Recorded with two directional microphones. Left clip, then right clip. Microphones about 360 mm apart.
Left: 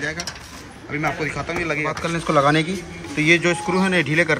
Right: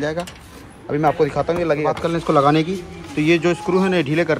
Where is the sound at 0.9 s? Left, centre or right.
Centre.